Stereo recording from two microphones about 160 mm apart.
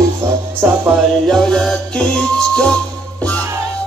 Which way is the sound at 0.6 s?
10° right (ahead or behind).